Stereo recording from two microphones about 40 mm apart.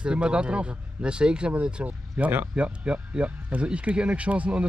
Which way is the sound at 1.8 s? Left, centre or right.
Right.